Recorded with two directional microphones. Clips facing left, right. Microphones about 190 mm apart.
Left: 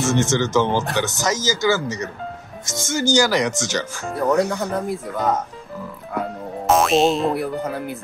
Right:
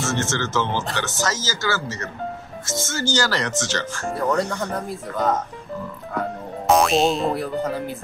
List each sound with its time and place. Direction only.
0.0 s speech: 15° left (ahead or behind)
6.7 s boing: centre (ahead or behind)